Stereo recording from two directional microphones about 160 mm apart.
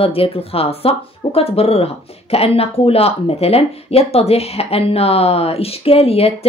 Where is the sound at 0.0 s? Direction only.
35° left (ahead or behind).